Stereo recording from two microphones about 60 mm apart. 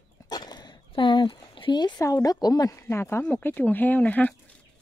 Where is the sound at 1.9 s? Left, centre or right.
Left.